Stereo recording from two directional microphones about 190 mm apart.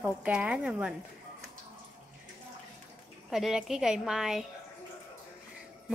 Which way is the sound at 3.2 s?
Centre (ahead or behind).